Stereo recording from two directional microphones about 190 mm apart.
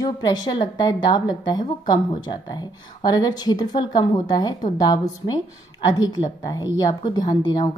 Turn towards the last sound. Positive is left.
turn(degrees=20)  # may be behind; listen again after turning